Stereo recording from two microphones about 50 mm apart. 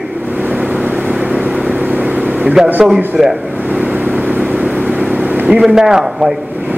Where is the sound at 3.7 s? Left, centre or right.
Right.